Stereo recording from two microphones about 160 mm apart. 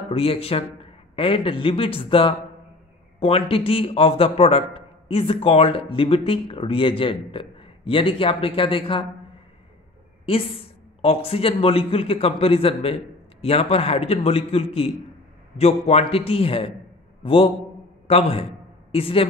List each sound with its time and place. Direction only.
0.1 s a man's voice: 35° left (ahead or behind)
10.2 s a man's voice: 35° left (ahead or behind)